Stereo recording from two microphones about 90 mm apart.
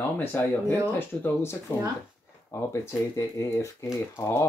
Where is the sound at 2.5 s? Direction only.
35° left (ahead or behind).